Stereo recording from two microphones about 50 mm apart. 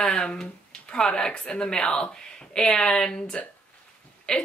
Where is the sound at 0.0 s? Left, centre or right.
Centre.